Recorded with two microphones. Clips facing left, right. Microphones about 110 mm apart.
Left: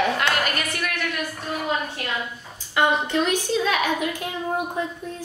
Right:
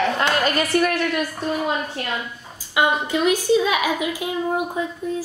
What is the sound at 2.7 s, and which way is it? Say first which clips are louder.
A child's voice: right 1 dB; 10° right (ahead or behind).